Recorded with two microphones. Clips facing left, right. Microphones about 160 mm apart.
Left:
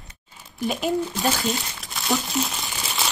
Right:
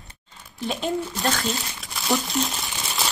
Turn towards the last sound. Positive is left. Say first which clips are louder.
# even
turn(degrees=0)  # may be behind; listen again after turning